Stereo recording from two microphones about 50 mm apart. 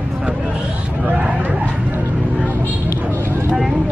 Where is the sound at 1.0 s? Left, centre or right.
Right.